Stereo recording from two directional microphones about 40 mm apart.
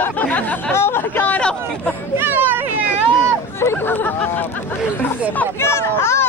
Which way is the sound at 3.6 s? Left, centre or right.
Left.